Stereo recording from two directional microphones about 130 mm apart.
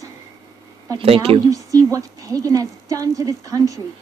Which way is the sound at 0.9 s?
45° right (ahead or behind).